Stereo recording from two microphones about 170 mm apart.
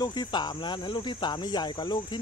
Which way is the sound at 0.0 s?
25° left (ahead or behind).